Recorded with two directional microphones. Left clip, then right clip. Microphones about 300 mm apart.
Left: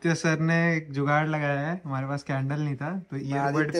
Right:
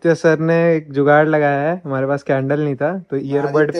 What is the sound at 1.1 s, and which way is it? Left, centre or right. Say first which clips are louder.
Speech: right 12 dB; right.